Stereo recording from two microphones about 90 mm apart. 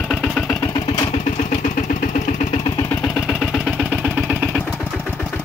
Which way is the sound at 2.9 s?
20° left (ahead or behind).